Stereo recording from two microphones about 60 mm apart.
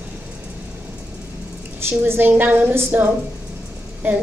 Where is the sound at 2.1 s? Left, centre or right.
Right.